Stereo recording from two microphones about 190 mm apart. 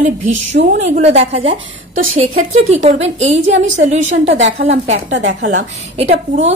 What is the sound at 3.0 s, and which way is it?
A woman's voice, 35° right (ahead or behind).